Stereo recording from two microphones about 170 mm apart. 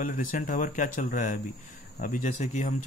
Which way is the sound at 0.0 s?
50° left (ahead or behind).